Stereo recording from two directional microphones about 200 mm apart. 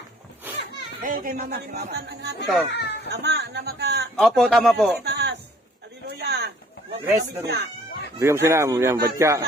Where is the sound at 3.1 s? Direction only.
55° right (ahead or behind).